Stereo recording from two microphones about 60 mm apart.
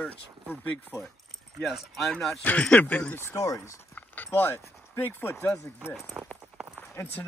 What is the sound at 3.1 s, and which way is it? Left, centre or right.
Speech, left.